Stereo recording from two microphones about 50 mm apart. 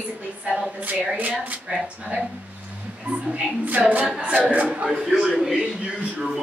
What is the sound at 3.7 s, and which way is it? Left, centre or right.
Speech, right.